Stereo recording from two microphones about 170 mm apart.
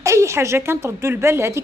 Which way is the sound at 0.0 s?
15° right (ahead or behind).